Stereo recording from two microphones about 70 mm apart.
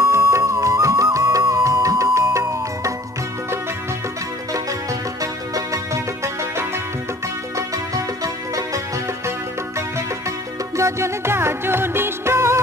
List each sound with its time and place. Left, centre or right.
0.0 s music: right
5.2 s music: right
7.5 s music: right
10.8 s music: right